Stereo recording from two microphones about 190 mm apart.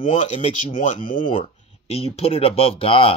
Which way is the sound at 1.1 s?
25° left (ahead or behind).